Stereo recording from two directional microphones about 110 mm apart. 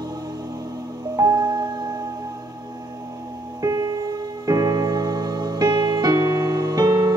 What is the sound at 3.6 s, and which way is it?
Music, 35° right (ahead or behind).